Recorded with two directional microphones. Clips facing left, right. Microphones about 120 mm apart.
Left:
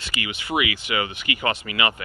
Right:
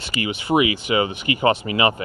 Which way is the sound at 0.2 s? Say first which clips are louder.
Right 7 dB; 40° right (ahead or behind).